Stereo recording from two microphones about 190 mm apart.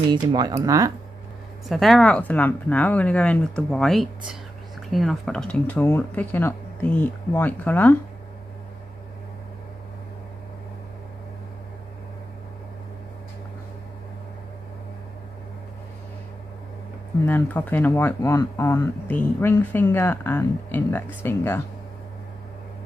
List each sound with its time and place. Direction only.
0.1 s speech: 25° right (ahead or behind)
1.7 s speech: centre (ahead or behind)
17.3 s speech: 10° left (ahead or behind)